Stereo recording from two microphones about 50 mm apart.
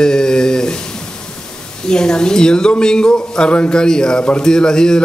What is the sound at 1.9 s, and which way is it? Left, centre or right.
Speech, centre.